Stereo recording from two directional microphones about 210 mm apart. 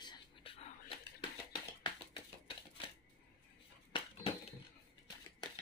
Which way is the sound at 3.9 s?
25° left (ahead or behind).